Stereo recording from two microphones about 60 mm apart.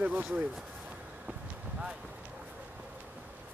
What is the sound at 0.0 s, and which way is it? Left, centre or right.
Speech, right.